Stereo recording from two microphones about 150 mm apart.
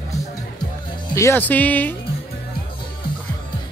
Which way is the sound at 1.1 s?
15° left (ahead or behind).